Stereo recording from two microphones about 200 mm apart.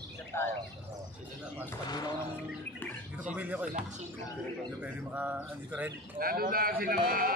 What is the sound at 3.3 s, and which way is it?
Speech, 10° right (ahead or behind).